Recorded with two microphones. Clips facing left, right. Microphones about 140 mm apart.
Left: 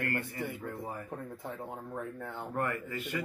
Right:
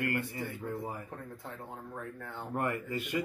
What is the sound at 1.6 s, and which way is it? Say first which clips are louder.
Speech: left 3 dB; 15° left (ahead or behind).